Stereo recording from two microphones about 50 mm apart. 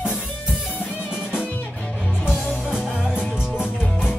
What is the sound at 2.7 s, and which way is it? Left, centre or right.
Music, centre.